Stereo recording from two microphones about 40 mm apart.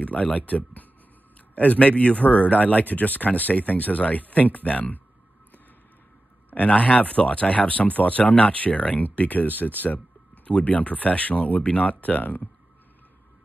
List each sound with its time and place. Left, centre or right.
0.0 s speech: left
6.5 s speech: left
10.4 s speech: left